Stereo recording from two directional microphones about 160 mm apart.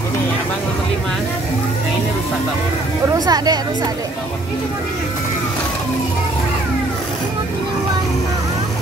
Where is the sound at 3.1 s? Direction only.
25° right (ahead or behind).